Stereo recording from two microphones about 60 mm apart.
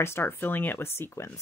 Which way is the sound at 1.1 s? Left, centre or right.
Left.